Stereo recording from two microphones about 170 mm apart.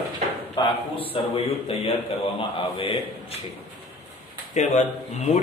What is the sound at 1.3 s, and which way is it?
A man's voice, 35° left (ahead or behind).